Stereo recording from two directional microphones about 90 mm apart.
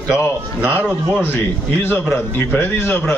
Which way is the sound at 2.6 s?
25° left (ahead or behind).